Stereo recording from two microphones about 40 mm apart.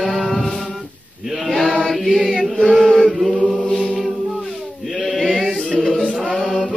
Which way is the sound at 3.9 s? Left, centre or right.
Centre.